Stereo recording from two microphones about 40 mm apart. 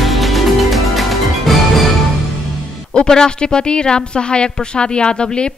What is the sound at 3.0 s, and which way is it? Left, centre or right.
A woman's voice, centre.